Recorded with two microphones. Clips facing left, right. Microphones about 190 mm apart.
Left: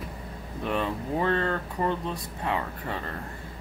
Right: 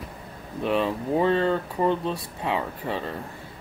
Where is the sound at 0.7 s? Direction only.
25° right (ahead or behind).